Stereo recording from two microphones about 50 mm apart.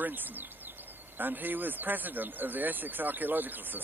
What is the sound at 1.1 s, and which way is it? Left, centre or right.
Speech, right.